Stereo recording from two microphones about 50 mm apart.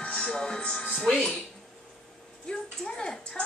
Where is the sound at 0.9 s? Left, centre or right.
Centre.